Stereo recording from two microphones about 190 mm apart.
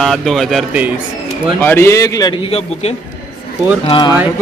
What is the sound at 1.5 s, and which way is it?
A man's voice, 10° left (ahead or behind).